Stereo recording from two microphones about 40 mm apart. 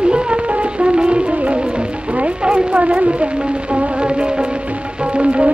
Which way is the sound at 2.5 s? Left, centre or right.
Right.